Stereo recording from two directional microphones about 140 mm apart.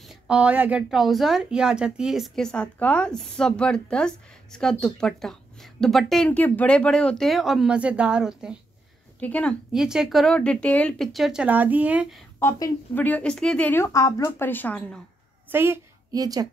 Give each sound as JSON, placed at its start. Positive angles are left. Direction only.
{"t": 0.0, "sound": "a woman's voice", "side_deg": -5}
{"t": 9.2, "sound": "speech", "side_deg": 10}
{"t": 9.7, "sound": "a woman's voice", "side_deg": -5}
{"t": 12.4, "sound": "a woman's voice", "side_deg": 20}
{"t": 15.5, "sound": "a woman's voice", "side_deg": -15}